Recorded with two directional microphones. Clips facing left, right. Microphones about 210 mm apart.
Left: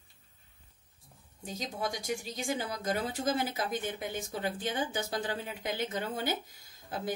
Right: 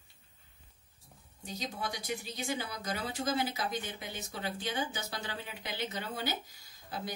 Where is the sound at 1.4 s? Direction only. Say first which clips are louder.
Left 3 dB; 45° left (ahead or behind).